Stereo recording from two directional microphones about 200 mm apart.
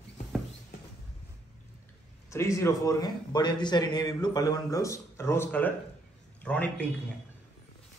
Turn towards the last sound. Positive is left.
turn(degrees=5)  # may be behind; listen again after turning